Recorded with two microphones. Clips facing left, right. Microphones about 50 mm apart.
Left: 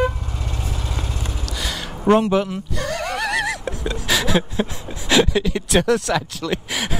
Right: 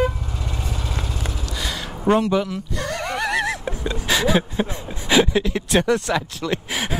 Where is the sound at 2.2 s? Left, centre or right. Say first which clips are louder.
Left 1 dB; centre.